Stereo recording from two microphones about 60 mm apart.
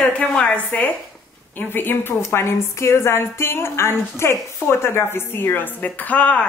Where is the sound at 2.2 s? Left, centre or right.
Left.